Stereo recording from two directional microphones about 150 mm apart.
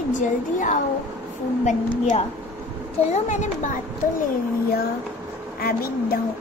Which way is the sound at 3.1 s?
50° left (ahead or behind).